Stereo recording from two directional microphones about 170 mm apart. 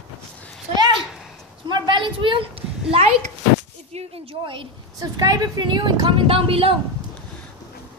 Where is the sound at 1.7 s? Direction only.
30° right (ahead or behind).